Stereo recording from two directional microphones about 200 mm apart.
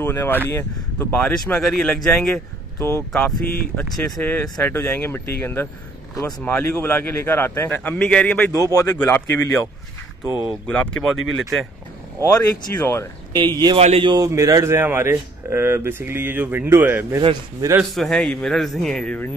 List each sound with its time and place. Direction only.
0.0 s a man's voice: 10° left (ahead or behind)
12.2 s a man's voice: 10° left (ahead or behind)
13.3 s speech: 20° right (ahead or behind)
17.2 s speech: 25° right (ahead or behind)
17.9 s speech: centre (ahead or behind)